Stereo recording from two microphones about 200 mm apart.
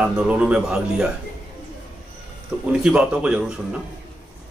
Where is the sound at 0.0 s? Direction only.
5° right (ahead or behind).